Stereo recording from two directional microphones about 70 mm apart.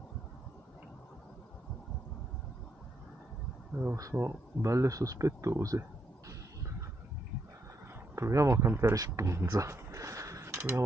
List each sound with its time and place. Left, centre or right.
3.9 s speech: right
8.2 s speech: right
8.9 s a sound: right